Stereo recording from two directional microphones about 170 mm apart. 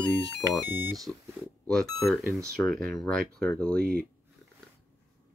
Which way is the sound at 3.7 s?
60° right (ahead or behind).